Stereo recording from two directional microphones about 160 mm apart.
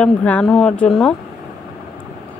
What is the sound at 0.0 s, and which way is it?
A woman's voice, 10° left (ahead or behind).